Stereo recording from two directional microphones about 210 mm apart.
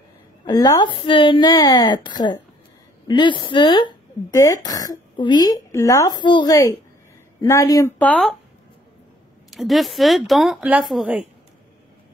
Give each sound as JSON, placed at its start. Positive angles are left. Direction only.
{"t": 0.5, "sound": "a woman's voice", "side_deg": 20}
{"t": 9.5, "sound": "speech", "side_deg": 0}